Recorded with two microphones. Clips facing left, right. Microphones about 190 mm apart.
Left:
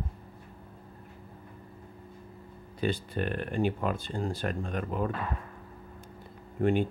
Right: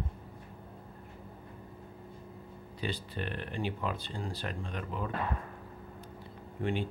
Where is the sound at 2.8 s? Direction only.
50° left (ahead or behind).